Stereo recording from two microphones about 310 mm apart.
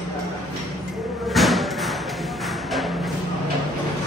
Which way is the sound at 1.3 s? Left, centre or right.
Centre.